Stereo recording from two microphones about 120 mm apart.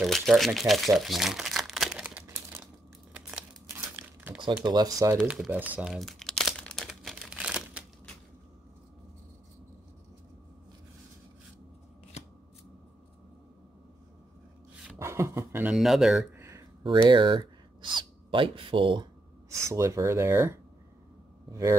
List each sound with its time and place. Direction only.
0.0 s speech: centre (ahead or behind)
2.2 s crumpling: 20° right (ahead or behind)
4.6 s speech: 35° right (ahead or behind)
5.3 s speech: 10° right (ahead or behind)
5.9 s crumpling: centre (ahead or behind)
12.2 s scissors: 65° left (ahead or behind)
15.0 s a sound: 25° right (ahead or behind)
15.6 s speech: 5° right (ahead or behind)
16.3 s a sound: 25° right (ahead or behind)
17.1 s speech: 40° right (ahead or behind)
19.5 s speech: 25° right (ahead or behind)